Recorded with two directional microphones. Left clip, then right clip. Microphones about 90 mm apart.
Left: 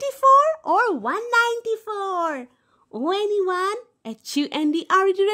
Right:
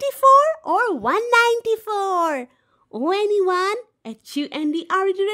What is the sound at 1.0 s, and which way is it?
A child's voice, 30° right (ahead or behind).